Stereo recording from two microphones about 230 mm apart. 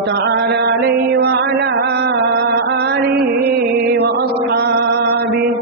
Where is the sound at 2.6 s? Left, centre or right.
Right.